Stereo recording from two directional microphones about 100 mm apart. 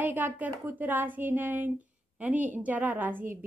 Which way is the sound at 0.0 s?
20° right (ahead or behind).